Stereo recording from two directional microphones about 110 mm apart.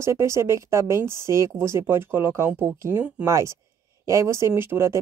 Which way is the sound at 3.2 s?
30° right (ahead or behind).